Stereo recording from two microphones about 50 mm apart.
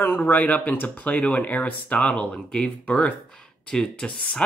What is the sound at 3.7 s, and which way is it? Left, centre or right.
Speech, centre.